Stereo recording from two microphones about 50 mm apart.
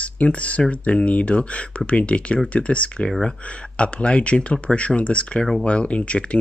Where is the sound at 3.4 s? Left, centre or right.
Left.